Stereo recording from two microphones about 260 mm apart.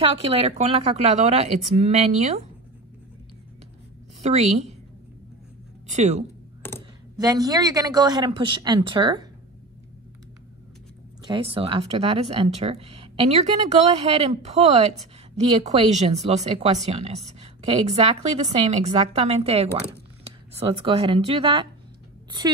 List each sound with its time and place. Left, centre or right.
0.0 s speech: right
4.2 s a woman's voice: right
5.9 s speech: right
7.2 s a woman's voice: centre
11.2 s speech: right